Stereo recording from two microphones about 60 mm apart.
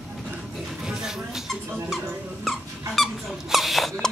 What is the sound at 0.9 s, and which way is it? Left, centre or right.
Squeak, centre.